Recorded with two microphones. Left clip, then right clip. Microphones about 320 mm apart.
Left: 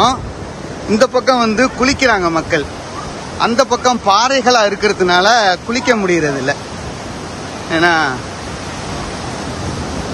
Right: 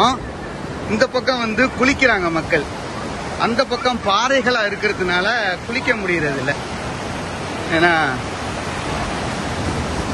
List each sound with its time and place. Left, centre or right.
0.9 s a man's voice: centre
7.7 s speech: centre